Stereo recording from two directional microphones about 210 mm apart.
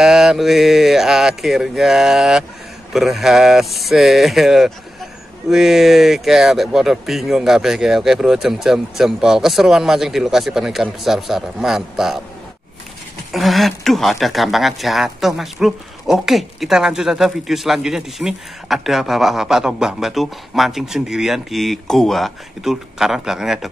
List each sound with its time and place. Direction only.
0.0 s speech: centre (ahead or behind)
13.3 s speech: centre (ahead or behind)